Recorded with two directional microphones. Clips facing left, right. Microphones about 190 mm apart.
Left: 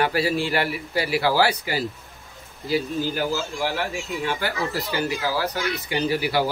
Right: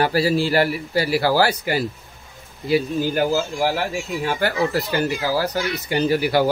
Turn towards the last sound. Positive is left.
turn(degrees=-50)  # may be behind; listen again after turning